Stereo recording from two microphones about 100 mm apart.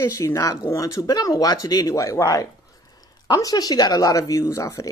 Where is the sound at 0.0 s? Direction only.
30° left (ahead or behind).